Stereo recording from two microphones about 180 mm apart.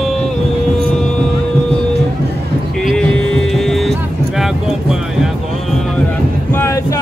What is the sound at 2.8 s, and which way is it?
Music, 5° left (ahead or behind).